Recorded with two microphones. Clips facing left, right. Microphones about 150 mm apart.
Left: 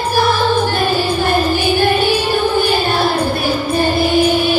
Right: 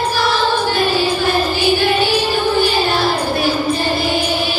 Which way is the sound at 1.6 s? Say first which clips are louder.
Left 1 dB; 55° left (ahead or behind).